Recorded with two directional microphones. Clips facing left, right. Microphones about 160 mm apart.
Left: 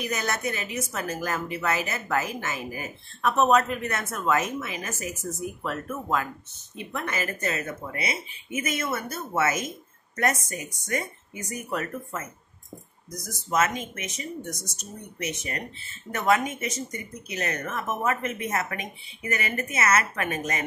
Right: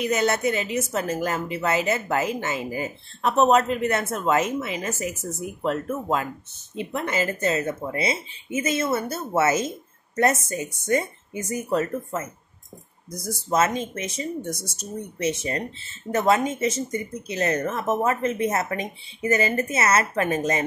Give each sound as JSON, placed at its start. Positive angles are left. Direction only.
{"t": 0.0, "sound": "a woman's voice", "side_deg": -25}
{"t": 13.3, "sound": "a woman's voice", "side_deg": -30}